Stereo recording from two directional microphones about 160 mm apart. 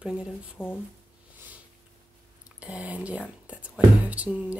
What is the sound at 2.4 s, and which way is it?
Speech, 5° right (ahead or behind).